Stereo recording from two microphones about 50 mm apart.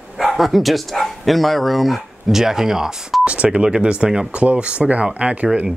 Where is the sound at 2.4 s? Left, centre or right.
Centre.